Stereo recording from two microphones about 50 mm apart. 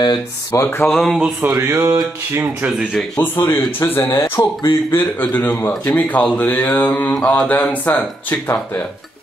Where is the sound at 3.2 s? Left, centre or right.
Left.